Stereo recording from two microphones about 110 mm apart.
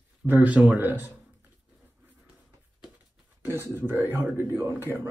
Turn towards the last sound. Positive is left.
turn(degrees=-20)  # may be behind; listen again after turning